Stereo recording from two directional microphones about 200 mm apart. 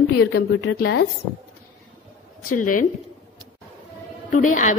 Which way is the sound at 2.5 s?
40° left (ahead or behind).